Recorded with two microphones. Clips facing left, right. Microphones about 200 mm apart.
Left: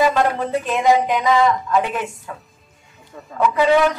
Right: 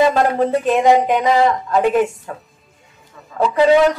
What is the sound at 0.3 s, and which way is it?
A man's voice, 35° right (ahead or behind).